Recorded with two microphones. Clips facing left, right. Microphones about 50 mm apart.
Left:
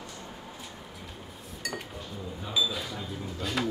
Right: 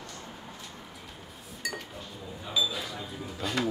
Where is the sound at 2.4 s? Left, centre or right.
Centre.